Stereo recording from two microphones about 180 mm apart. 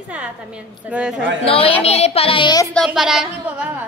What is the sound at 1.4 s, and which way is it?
A child's voice, 30° left (ahead or behind).